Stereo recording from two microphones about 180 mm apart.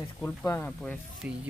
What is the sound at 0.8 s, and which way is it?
Speech, centre (ahead or behind).